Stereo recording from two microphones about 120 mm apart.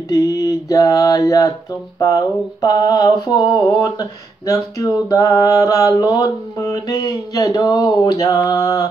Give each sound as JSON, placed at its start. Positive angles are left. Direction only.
{"t": 0.1, "sound": "mantra", "side_deg": 30}